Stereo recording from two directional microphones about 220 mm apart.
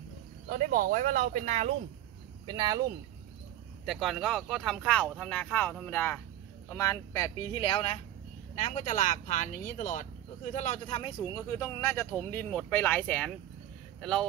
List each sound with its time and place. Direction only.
0.5 s speech: 35° right (ahead or behind)
2.4 s speech: 20° right (ahead or behind)
3.8 s speech: centre (ahead or behind); by 8.0 s 25° left (ahead or behind)
8.5 s speech: 35° left (ahead or behind)
11.3 s speech: 15° left (ahead or behind)